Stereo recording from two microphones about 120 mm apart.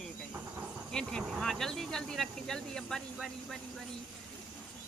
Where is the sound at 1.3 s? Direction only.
5° left (ahead or behind).